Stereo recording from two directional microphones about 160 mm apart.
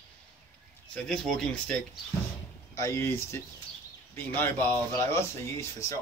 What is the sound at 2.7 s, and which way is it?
Speech, 15° left (ahead or behind).